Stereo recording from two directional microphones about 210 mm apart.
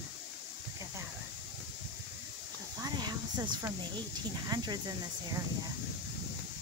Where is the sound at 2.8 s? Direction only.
20° right (ahead or behind).